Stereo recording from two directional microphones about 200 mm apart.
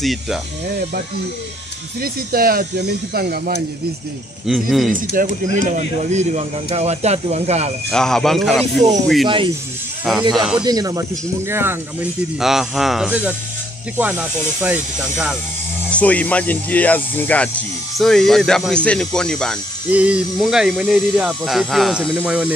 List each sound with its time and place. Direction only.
0.0 s speech: centre (ahead or behind)
2.0 s speech: 50° right (ahead or behind)
4.5 s speech: centre (ahead or behind)
5.1 s speech: 40° right (ahead or behind)
7.9 s speech: 5° left (ahead or behind)
10.3 s speech: centre (ahead or behind)
10.6 s speech: 20° right (ahead or behind)
15.9 s speech: 5° left (ahead or behind)